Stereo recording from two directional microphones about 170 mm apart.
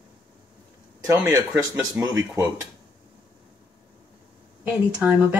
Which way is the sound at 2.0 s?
15° right (ahead or behind).